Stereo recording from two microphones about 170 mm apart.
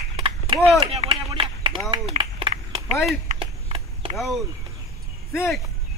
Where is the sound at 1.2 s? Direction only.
30° right (ahead or behind).